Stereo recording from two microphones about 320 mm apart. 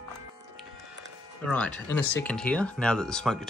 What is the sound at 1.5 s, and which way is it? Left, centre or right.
Speech, centre.